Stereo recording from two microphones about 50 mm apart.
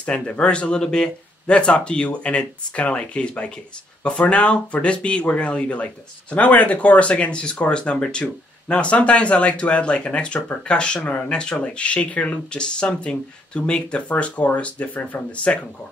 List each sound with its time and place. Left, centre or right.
0.0 s speech: left